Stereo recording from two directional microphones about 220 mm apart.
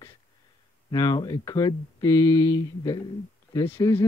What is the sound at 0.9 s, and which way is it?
Speech, 20° left (ahead or behind).